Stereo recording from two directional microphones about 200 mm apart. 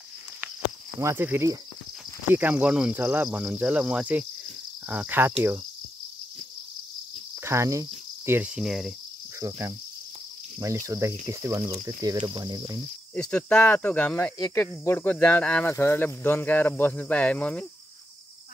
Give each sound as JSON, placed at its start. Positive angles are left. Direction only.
{"t": 1.0, "sound": "speech", "side_deg": -10}
{"t": 7.4, "sound": "cricket", "side_deg": -15}
{"t": 9.4, "sound": "speech", "side_deg": -15}
{"t": 13.1, "sound": "speech", "side_deg": 5}